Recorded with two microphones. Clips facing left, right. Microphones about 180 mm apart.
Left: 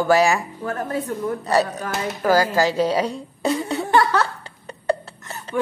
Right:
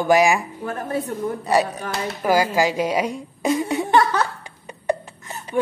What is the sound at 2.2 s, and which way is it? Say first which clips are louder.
Speech: left 1 dB; 10° right (ahead or behind).